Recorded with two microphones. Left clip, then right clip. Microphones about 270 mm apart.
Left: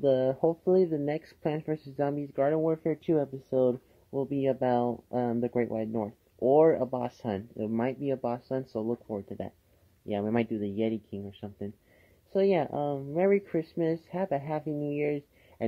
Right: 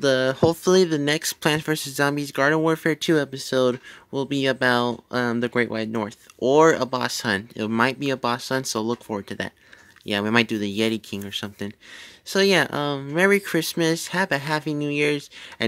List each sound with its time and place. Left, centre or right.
0.5 s speech: right
4.5 s speech: right
7.6 s speech: right
10.5 s speech: right
10.8 s speech: right